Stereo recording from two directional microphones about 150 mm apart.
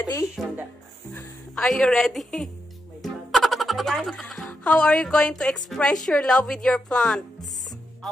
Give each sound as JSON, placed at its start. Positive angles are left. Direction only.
{"t": 0.0, "sound": "speech", "side_deg": 20}
{"t": 1.1, "sound": "speech", "side_deg": 5}